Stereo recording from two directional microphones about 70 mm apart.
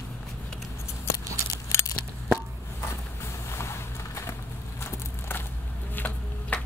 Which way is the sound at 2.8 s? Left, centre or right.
Left.